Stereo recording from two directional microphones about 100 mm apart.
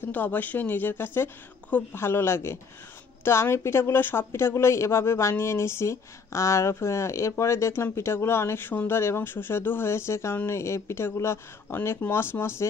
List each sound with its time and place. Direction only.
0.1 s speech: 15° left (ahead or behind)